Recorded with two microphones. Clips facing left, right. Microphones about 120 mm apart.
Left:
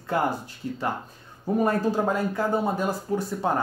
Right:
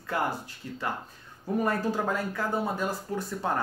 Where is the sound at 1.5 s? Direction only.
20° left (ahead or behind).